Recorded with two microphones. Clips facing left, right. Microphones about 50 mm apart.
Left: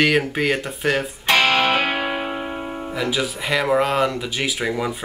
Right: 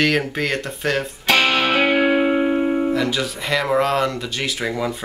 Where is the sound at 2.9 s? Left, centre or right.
Centre.